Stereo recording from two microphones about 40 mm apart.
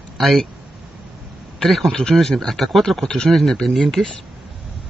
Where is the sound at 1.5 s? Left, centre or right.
Centre.